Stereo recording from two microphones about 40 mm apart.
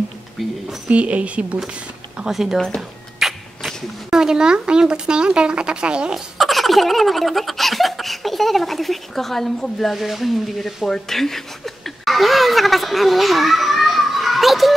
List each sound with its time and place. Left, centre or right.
0.4 s speech: centre
0.8 s a woman's voice: right
2.2 s a sound: right
3.2 s sneeze: centre
4.2 s speech: centre
6.1 s speech: centre
9.9 s speech: centre
10.9 s chuckle: centre